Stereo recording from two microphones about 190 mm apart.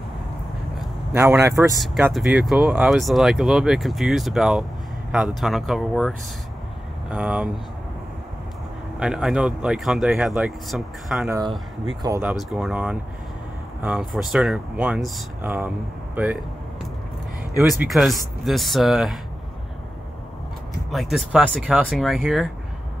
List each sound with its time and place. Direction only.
1.1 s speech: 15° right (ahead or behind)
1.8 s speech: 5° right (ahead or behind)
9.0 s speech: 5° right (ahead or behind)
11.2 s speech: 20° right (ahead or behind)
12.3 s speech: centre (ahead or behind)
17.8 s speech: centre (ahead or behind)
20.9 s speech: centre (ahead or behind)